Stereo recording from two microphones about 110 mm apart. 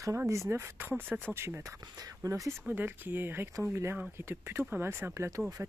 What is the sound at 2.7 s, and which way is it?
Speech, 15° right (ahead or behind).